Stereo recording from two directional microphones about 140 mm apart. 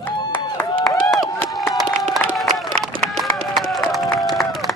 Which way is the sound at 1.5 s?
25° left (ahead or behind).